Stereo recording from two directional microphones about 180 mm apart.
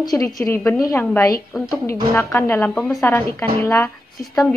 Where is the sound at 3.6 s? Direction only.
15° left (ahead or behind).